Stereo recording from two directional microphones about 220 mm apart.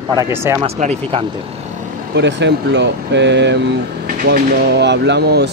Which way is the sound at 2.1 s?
55° right (ahead or behind).